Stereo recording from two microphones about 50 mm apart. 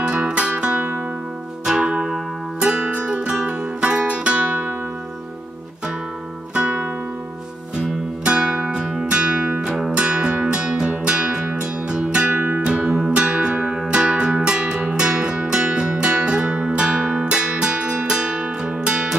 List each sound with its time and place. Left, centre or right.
0.0 s music: centre
6.5 s music: right
8.2 s music: right
8.7 s music: centre
9.0 s music: right